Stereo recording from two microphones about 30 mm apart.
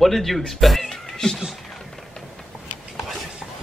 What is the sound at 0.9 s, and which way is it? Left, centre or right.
Cat, centre.